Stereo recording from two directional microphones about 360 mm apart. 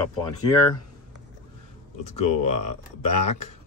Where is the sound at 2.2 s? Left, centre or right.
Left.